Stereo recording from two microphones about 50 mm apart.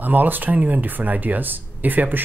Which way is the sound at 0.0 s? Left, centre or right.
Right.